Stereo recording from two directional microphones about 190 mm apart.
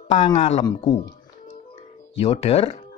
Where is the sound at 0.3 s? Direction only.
35° left (ahead or behind).